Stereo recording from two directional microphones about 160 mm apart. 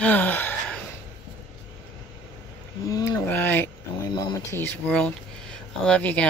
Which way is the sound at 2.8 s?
20° left (ahead or behind).